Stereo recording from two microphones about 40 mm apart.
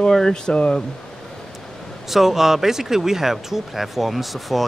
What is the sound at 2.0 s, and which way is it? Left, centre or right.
Speech, centre.